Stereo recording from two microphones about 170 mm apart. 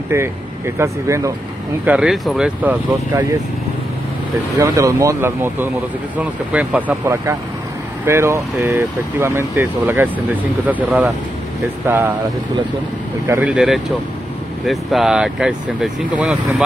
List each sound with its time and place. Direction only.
0.1 s speech: 15° right (ahead or behind)
1.9 s speech: 5° right (ahead or behind)
4.6 s speech: 20° right (ahead or behind)
13.3 s speech: 10° right (ahead or behind)